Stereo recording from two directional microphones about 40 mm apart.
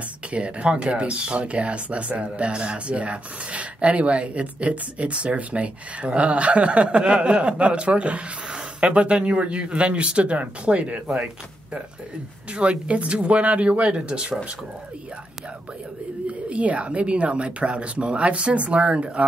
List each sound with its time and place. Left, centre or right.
0.3 s speech: right
12.5 s speech: right
16.3 s speech: right